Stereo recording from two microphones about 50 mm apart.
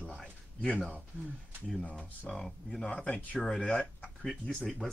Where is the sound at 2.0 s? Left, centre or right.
Centre.